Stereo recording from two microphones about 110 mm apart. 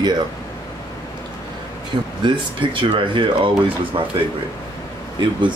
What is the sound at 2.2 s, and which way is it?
Speech, 50° right (ahead or behind).